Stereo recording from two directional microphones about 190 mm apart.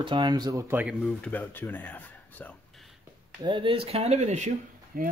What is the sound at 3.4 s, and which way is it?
Speech, 25° right (ahead or behind).